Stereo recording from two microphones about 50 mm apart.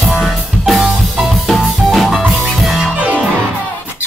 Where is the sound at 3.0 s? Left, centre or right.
Right.